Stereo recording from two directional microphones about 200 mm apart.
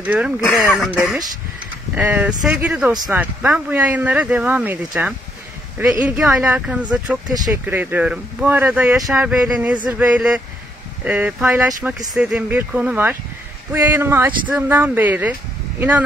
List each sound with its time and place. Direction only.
0.0 s speech: 10° right (ahead or behind)
2.9 s speech: 20° right (ahead or behind)
3.2 s speech: 5° right (ahead or behind)
7.2 s speech: 20° right (ahead or behind)
7.6 s speech: 10° right (ahead or behind)